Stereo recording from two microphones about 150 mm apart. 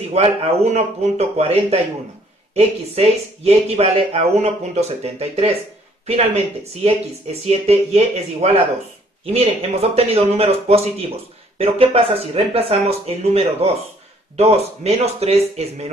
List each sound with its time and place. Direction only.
0.1 s speech: 45° right (ahead or behind)